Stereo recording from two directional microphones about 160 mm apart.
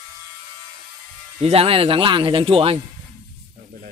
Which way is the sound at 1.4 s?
40° right (ahead or behind).